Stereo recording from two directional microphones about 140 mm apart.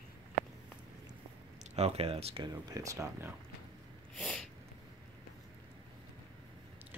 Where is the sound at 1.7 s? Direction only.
45° right (ahead or behind).